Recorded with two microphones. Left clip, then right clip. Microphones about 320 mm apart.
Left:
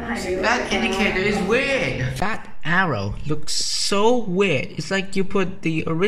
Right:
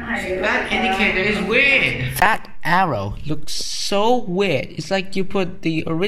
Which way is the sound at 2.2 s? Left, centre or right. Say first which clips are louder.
Right 9 dB; centre.